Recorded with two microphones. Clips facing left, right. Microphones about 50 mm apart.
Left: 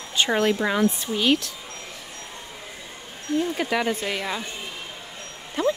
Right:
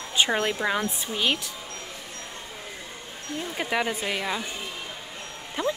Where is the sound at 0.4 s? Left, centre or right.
Centre.